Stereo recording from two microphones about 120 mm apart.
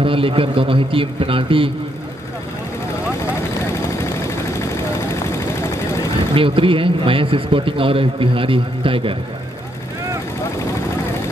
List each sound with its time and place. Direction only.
0.0 s a man's voice: 50° right (ahead or behind)
3.6 s vehicle: 25° left (ahead or behind)
6.3 s a man's voice: 50° right (ahead or behind)